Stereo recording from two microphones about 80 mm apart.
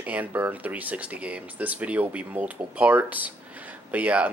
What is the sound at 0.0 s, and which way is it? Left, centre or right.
Speech, centre.